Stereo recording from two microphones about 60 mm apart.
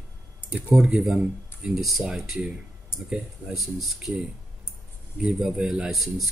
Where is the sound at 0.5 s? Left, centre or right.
Centre.